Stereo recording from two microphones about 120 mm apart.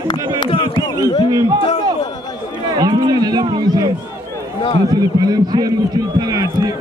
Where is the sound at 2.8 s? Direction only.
35° right (ahead or behind).